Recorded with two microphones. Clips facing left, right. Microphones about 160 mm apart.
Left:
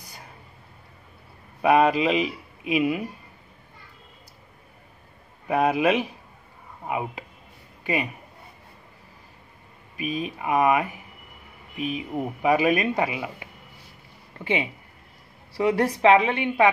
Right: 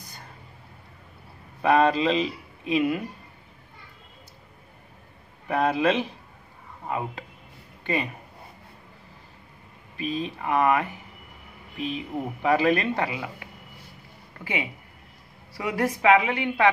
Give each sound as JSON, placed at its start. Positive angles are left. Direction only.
{"t": 1.6, "sound": "speech", "side_deg": 10}
{"t": 5.5, "sound": "speech", "side_deg": 10}
{"t": 9.9, "sound": "a woman's voice", "side_deg": 15}